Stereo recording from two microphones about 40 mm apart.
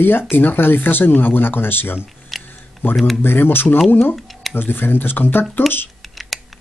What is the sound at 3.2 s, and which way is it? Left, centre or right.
Speech, left.